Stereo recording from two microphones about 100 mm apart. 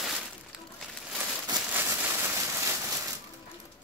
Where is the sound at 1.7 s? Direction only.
20° right (ahead or behind).